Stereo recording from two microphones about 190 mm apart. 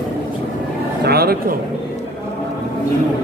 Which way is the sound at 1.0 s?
55° right (ahead or behind).